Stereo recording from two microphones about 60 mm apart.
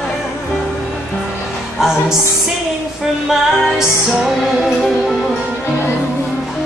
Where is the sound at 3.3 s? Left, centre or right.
Centre.